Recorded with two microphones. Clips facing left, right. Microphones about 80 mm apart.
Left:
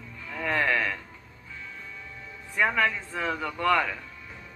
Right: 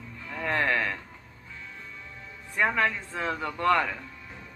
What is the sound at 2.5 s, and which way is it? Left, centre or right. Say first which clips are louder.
Speech: left 1 dB; centre.